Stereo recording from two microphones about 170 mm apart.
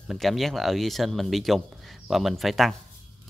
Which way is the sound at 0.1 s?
Centre (ahead or behind).